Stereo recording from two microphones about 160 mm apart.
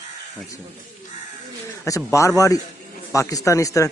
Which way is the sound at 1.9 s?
20° left (ahead or behind).